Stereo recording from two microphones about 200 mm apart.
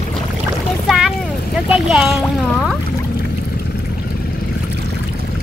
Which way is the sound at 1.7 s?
Centre (ahead or behind).